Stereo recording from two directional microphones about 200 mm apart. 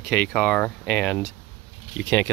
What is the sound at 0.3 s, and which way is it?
Speech, 5° left (ahead or behind).